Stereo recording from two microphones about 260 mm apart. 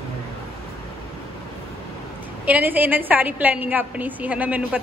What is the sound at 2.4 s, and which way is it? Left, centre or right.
A woman's voice, centre.